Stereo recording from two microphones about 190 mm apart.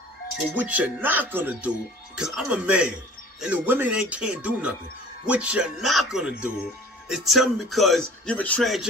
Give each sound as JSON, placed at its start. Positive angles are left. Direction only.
{"t": 0.6, "sound": "speech", "side_deg": -10}